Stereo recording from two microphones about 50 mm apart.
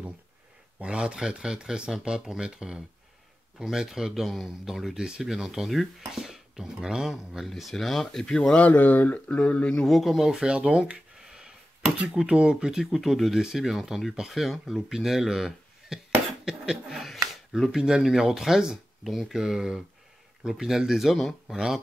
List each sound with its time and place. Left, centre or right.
0.7 s speech: right; by 8.5 s centre
8.5 s speech: left
9.8 s speech: centre
10.3 s speech: centre
11.2 s a sound: centre
12.1 s speech: centre
12.9 s speech: centre